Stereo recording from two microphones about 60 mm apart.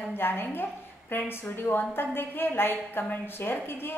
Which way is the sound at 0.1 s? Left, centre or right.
Left.